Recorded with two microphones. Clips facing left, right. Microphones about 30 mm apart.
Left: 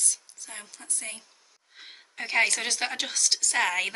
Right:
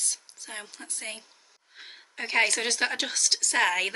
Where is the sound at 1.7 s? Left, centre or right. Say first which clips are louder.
Even; centre.